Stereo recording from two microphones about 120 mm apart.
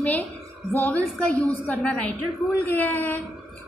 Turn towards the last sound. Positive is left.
turn(degrees=15)  # may be behind; listen again after turning